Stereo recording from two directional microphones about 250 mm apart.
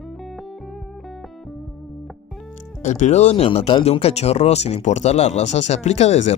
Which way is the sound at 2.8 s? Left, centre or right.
Left.